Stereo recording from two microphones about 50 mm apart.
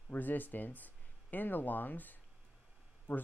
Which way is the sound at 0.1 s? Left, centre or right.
Left.